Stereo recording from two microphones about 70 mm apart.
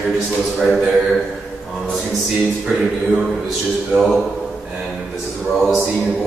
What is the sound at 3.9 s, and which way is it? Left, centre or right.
Speech, centre.